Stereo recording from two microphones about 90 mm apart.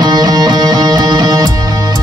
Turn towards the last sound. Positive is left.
turn(degrees=-50)  # may be behind; listen again after turning